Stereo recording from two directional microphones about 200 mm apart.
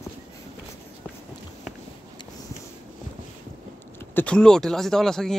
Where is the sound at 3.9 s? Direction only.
10° left (ahead or behind).